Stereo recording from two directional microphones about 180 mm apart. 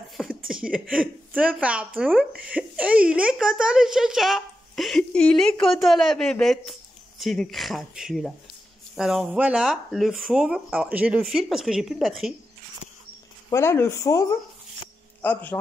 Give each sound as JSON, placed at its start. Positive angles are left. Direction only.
{"t": 0.5, "sound": "speech", "side_deg": -5}
{"t": 13.5, "sound": "speech", "side_deg": 15}
{"t": 15.2, "sound": "speech", "side_deg": 10}